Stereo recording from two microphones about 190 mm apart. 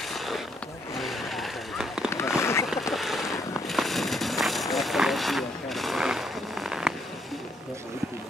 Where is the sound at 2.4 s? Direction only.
15° left (ahead or behind).